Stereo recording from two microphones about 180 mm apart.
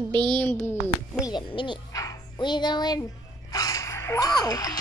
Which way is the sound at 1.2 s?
25° left (ahead or behind).